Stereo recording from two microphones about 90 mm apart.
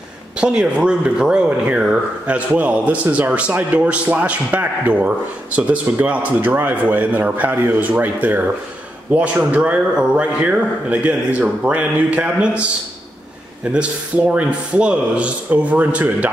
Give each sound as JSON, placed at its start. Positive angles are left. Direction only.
{"t": 0.4, "sound": "speech", "side_deg": -10}
{"t": 13.7, "sound": "speech", "side_deg": -15}